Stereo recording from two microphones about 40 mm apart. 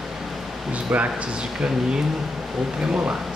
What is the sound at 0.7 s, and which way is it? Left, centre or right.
Speech, right.